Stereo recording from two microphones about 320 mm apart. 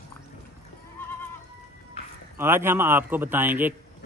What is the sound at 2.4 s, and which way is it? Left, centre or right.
A man's voice, centre.